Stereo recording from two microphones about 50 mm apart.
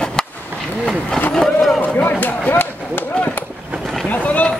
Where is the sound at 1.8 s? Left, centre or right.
Left.